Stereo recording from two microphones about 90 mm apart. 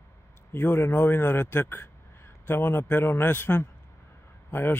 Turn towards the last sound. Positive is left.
turn(degrees=25)  # may be behind; listen again after turning